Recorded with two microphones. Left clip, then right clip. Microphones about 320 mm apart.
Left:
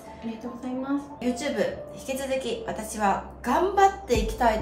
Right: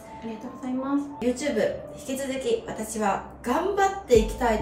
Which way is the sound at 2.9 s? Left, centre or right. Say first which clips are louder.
Left 1 dB; left.